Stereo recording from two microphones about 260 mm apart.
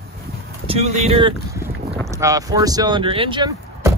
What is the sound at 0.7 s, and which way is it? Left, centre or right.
Speech, right.